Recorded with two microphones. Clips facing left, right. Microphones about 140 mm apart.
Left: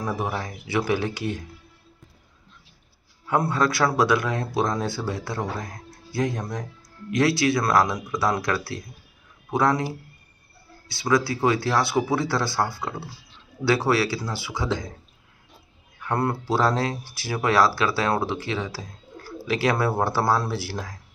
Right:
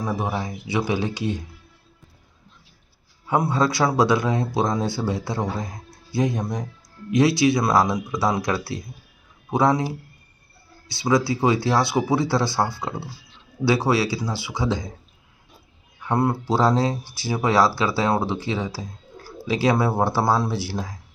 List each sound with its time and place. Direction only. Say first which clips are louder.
0.2 s speech: right 2 dB; 15° right (ahead or behind)
3.3 s speech: right 1 dB; 20° right (ahead or behind)
10.9 s speech: right 2 dB; 20° right (ahead or behind)
16.0 s speech: right 3 dB; 10° right (ahead or behind)
16.5 s speech: right 3 dB; 25° right (ahead or behind)
17.0 s speech: right 4 dB; centre (ahead or behind)
17.3 s speech: right 1 dB; 20° right (ahead or behind)